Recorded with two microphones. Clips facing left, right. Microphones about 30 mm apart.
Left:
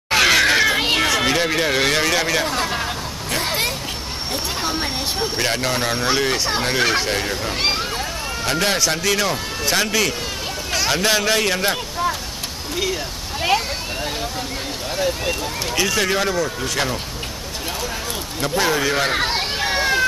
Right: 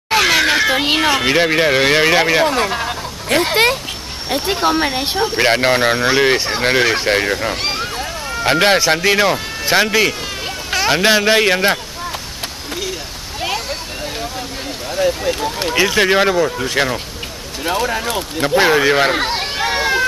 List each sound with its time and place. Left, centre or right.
0.1 s a sound: centre
1.0 s speech: right
2.7 s hubbub: centre
3.3 s speech: right
4.6 s speech: right
6.8 s speech: centre
7.1 s speech: right
7.6 s vehicle: centre
8.5 s speech: right
13.4 s a sound: centre
15.7 s speech: right
17.6 s speech: right
18.1 s speech: right
19.1 s hubbub: centre